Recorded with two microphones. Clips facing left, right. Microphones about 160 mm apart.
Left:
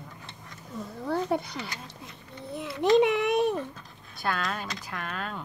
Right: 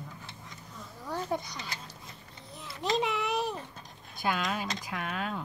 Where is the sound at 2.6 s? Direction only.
60° left (ahead or behind).